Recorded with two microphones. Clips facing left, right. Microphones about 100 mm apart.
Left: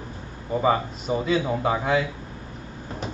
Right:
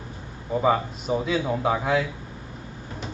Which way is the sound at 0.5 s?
Centre (ahead or behind).